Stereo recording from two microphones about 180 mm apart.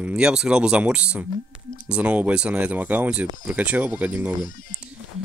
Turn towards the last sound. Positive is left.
turn(degrees=50)  # may be behind; listen again after turning